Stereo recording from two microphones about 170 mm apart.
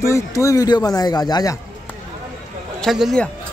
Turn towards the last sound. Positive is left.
turn(degrees=0)  # may be behind; listen again after turning